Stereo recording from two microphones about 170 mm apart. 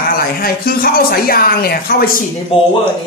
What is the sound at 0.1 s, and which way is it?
Speech, 60° left (ahead or behind).